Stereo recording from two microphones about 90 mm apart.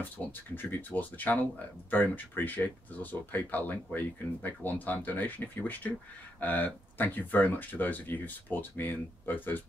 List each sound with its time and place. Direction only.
0.6 s speech: 20° left (ahead or behind)